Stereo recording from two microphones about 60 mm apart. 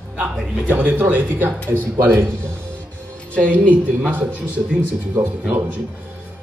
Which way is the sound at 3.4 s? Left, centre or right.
Right.